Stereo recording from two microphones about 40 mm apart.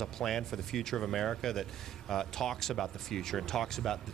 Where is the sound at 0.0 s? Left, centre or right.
Centre.